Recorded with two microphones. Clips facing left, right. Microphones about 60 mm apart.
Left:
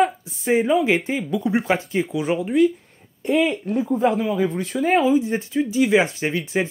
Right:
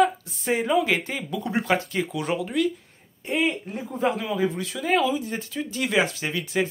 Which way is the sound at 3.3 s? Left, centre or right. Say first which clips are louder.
Left 6 dB; left.